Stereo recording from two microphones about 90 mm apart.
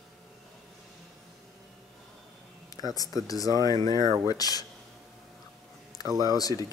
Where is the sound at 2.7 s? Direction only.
45° left (ahead or behind).